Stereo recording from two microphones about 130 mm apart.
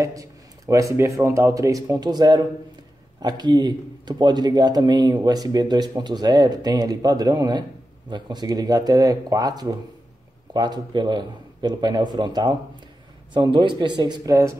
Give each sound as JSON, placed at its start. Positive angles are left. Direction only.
{"t": 0.0, "sound": "speech", "side_deg": -25}